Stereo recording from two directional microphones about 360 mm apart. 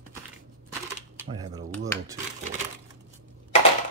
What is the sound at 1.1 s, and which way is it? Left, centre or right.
Speech, centre.